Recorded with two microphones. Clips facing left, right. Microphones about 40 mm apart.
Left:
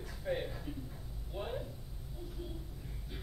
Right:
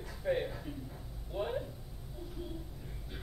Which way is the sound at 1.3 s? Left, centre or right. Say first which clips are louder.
Right 4 dB; centre.